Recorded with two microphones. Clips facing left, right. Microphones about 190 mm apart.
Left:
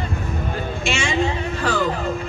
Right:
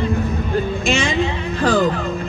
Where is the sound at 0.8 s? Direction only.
35° right (ahead or behind).